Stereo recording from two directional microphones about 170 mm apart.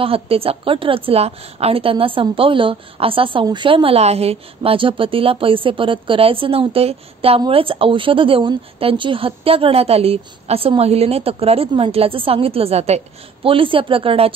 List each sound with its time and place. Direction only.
0.0 s a woman's voice: 35° right (ahead or behind)